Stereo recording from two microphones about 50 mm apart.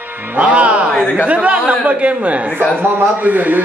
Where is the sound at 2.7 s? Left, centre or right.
Right.